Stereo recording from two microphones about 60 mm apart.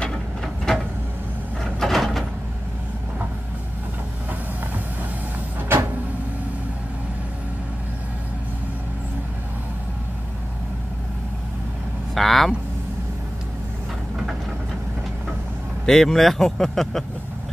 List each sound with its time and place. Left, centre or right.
0.7 s a sound: centre
5.6 s vehicle: right
12.2 s vehicle: centre
15.8 s speech: centre